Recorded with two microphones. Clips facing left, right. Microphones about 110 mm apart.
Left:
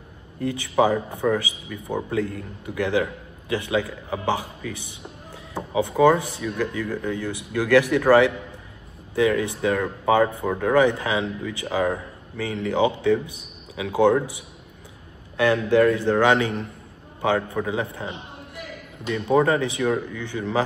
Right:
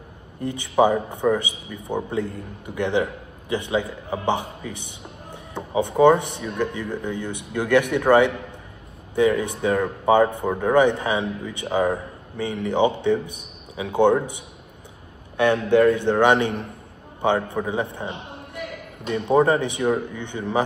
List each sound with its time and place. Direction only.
0.4 s speech: 25° right (ahead or behind)
15.3 s speech: 25° right (ahead or behind)